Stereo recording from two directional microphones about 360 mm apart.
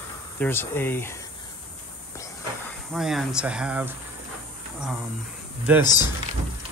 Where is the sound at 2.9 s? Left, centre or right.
Centre.